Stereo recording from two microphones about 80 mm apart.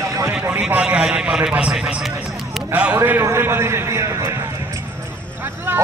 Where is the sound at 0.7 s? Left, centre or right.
Centre.